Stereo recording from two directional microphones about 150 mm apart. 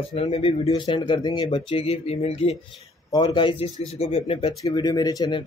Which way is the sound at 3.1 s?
30° left (ahead or behind).